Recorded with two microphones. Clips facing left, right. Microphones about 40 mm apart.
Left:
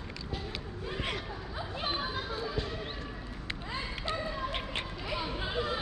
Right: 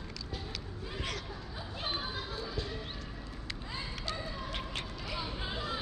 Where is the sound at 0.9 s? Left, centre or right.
Left.